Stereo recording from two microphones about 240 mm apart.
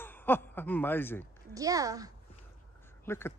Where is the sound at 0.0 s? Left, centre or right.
Centre.